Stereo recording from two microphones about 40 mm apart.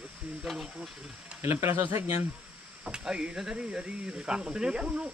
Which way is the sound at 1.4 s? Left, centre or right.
Right.